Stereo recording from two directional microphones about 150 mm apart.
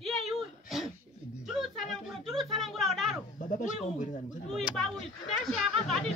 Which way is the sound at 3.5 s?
55° left (ahead or behind).